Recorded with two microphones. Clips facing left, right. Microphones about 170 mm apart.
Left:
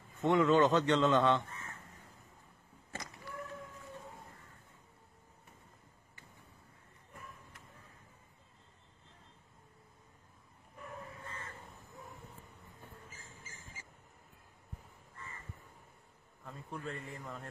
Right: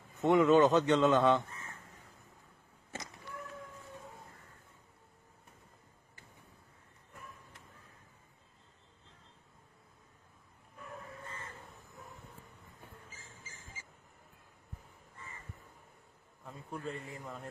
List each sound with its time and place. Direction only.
0.2 s a man's voice: 10° right (ahead or behind)
2.9 s power windows: 20° right (ahead or behind)
16.4 s a sound: 5° right (ahead or behind)